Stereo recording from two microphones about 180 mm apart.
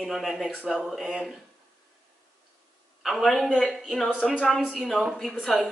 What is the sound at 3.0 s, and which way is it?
Speech, centre (ahead or behind).